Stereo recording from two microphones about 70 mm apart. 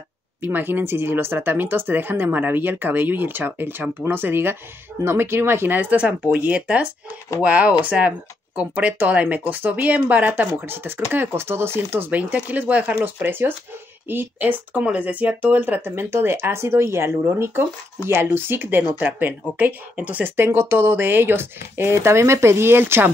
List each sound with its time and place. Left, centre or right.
0.4 s speech: right
12.1 s speech: right
15.9 s speech: right